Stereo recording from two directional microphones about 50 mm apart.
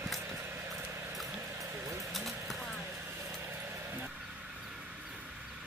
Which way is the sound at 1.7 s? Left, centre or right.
Right.